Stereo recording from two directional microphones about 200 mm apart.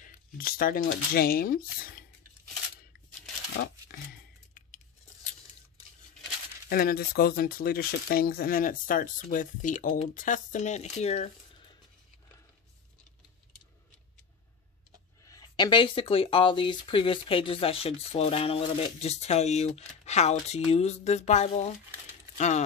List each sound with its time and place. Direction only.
0.0 s speech: 45° left (ahead or behind)
3.9 s a sound: 55° left (ahead or behind)
6.7 s speech: 50° left (ahead or behind); by 11.3 s 30° left (ahead or behind)
15.2 s speech: 20° left (ahead or behind); by 21.6 s 35° left (ahead or behind)